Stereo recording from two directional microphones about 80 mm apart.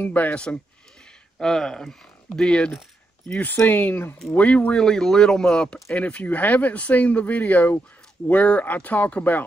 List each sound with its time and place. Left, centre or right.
0.0 s speech: centre
3.3 s speech: left
4.3 s speech: centre